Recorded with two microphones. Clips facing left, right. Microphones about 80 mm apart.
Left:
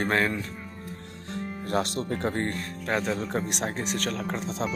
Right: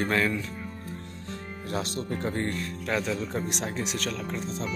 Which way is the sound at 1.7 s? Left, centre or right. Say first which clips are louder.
Left 3 dB; left.